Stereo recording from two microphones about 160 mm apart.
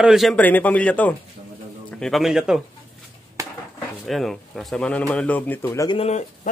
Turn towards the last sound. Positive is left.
turn(degrees=40)  # may be behind; listen again after turning